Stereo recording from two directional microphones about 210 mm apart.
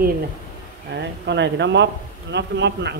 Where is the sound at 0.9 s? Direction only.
55° right (ahead or behind).